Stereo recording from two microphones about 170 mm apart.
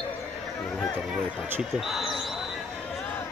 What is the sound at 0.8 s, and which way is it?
Basketball bounce, centre (ahead or behind).